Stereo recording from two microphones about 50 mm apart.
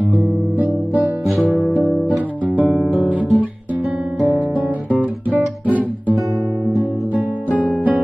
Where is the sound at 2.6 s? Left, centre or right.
Centre.